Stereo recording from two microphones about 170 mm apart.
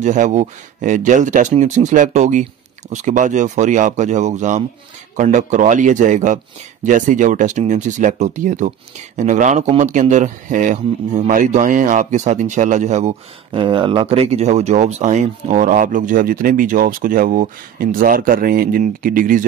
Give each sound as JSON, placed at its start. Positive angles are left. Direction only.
{"t": 0.0, "sound": "speech", "side_deg": -45}
{"t": 13.5, "sound": "speech", "side_deg": -30}